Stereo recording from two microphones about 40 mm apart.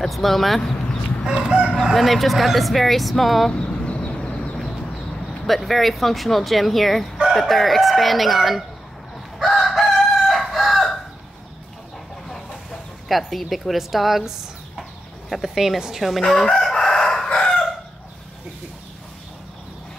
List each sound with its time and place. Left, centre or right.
0.0 s speech: centre
1.3 s chicken: right
1.7 s speech: centre
3.5 s a sound: left
5.4 s speech: centre
9.4 s chicken: centre
13.1 s speech: centre
14.8 s chicken: centre
15.5 s a woman's voice: centre
16.0 s speech: centre
16.7 s crowing: centre
17.4 s chicken: centre